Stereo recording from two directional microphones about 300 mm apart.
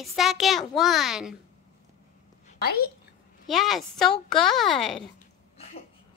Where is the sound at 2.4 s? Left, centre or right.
Left.